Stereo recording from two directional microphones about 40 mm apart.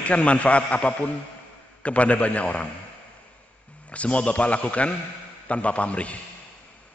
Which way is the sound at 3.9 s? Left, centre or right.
Left.